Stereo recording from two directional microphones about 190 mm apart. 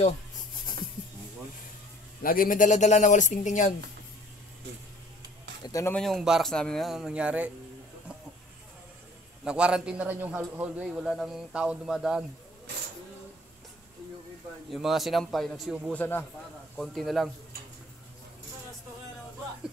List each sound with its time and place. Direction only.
2.2 s speech: 50° left (ahead or behind)
5.7 s speech: 15° left (ahead or behind)
5.9 s speech: centre (ahead or behind)
9.4 s speech: 5° right (ahead or behind)
14.7 s speech: centre (ahead or behind)
15.9 s speech: 10° left (ahead or behind)